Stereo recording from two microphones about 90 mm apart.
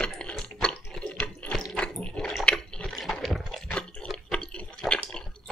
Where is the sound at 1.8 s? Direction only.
10° left (ahead or behind).